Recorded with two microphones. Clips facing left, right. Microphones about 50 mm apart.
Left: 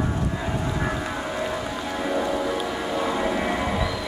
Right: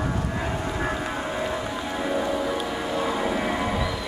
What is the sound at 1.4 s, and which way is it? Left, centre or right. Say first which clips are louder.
Rain on surface: even; centre.